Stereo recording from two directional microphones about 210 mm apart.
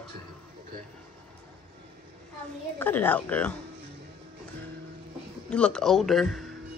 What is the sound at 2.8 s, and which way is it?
Speech, 10° left (ahead or behind).